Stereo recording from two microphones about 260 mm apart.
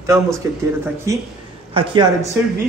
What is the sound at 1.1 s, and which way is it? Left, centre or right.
Speech, centre.